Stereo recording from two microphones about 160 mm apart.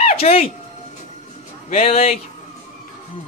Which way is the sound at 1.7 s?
40° left (ahead or behind).